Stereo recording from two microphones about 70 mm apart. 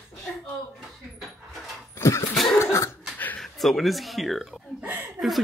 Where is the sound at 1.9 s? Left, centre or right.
Left.